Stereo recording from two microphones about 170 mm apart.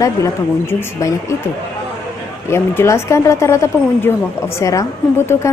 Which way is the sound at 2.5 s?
15° left (ahead or behind).